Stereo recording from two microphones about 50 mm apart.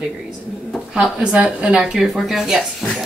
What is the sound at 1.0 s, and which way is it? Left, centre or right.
Speech, centre.